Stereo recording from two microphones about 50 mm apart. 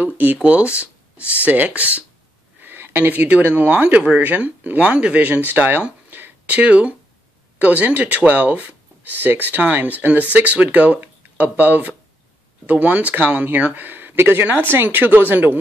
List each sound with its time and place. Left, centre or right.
0.0 s a sound: right
0.4 s speech: right
2.6 s a sound: right
3.2 s speech: right
6.4 s speech: right
14.1 s speech: right